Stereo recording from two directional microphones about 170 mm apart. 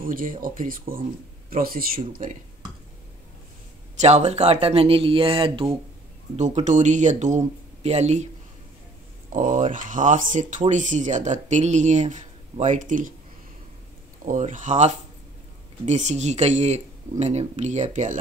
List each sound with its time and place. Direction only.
0.0 s speech: 55° right (ahead or behind)
3.9 s speech: 40° right (ahead or behind)
6.3 s speech: 45° right (ahead or behind)
9.3 s speech: 50° right (ahead or behind)
14.2 s speech: 45° right (ahead or behind)